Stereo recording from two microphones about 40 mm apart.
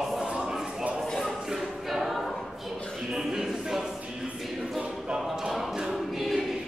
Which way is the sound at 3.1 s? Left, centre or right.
Centre.